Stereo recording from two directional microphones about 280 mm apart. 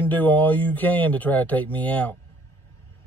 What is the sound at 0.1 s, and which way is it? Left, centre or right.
Speech, centre.